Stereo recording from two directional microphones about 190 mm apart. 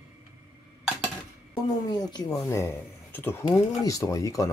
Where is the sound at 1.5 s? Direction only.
20° left (ahead or behind).